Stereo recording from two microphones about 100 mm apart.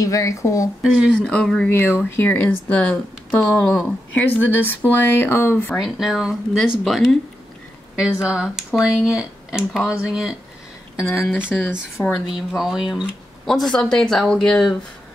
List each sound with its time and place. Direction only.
0.0 s a woman's voice: 35° left (ahead or behind)
0.8 s speech: 10° left (ahead or behind)
1.7 s speech: 20° left (ahead or behind)
5.8 s speech: 5° right (ahead or behind)
11.3 s speech: 10° right (ahead or behind)